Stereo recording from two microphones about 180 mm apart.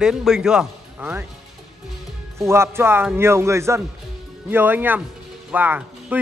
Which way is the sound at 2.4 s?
15° right (ahead or behind).